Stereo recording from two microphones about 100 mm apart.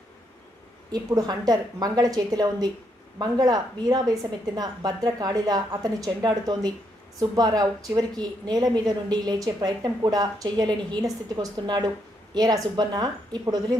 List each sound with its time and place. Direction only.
0.9 s a woman's voice: 40° right (ahead or behind)